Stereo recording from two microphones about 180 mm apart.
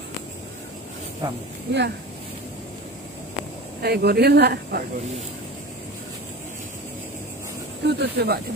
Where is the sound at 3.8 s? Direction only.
60° right (ahead or behind).